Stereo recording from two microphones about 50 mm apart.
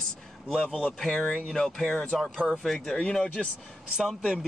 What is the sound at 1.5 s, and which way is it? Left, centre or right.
A man's voice, centre.